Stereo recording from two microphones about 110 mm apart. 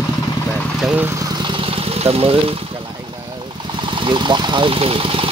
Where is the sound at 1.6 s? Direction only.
60° right (ahead or behind).